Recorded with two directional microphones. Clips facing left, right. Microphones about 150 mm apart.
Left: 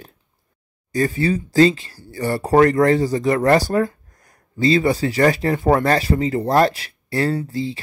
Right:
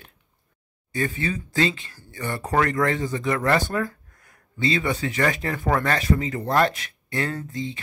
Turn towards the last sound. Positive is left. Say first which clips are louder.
# left 7 dB
turn(degrees=35)  # may be behind; listen again after turning